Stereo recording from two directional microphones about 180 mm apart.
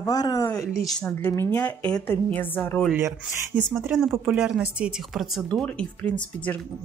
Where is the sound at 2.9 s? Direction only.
10° right (ahead or behind).